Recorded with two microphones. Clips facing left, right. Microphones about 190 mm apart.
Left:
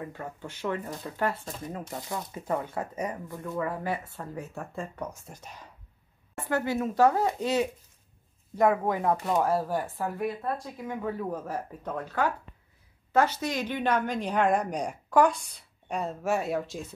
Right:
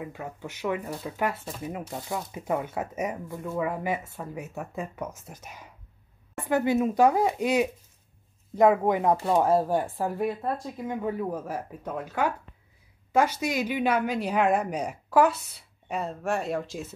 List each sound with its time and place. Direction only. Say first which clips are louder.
0.0 s speech: right 1 dB; 10° right (ahead or behind)
6.3 s a woman's voice: right 4 dB; 15° right (ahead or behind); by 16.9 s centre (ahead or behind)